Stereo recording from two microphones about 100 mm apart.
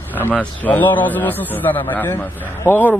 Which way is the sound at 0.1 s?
15° left (ahead or behind).